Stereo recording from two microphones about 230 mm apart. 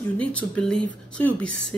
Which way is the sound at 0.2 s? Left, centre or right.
Centre.